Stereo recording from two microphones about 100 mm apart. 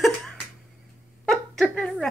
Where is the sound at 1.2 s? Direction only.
5° left (ahead or behind).